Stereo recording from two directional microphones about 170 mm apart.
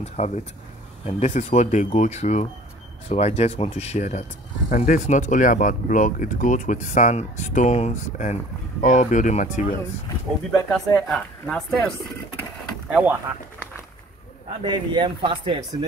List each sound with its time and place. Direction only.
0.0 s speech: 40° left (ahead or behind)
10.7 s speech: centre (ahead or behind)
12.9 s speech: 10° right (ahead or behind)
14.6 s speech: 25° right (ahead or behind)